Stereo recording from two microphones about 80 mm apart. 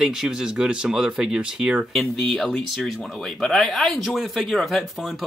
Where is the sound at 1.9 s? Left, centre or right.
Centre.